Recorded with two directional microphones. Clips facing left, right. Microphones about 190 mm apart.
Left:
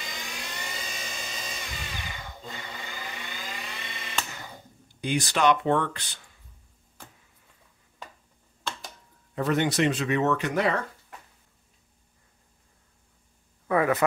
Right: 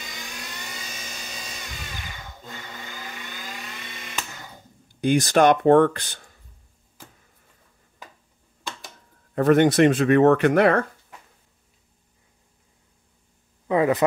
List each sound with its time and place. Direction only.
5.0 s speech: 50° right (ahead or behind)
9.3 s speech: 55° right (ahead or behind)
13.7 s speech: 20° right (ahead or behind)